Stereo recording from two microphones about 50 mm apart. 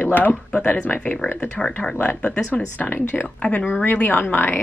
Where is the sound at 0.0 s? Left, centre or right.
Left.